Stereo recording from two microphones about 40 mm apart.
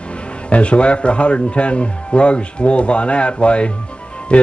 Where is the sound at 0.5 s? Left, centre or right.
Left.